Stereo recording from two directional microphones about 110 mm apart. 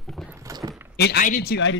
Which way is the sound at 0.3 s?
30° right (ahead or behind).